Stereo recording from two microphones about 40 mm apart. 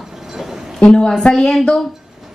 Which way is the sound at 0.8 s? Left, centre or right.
Centre.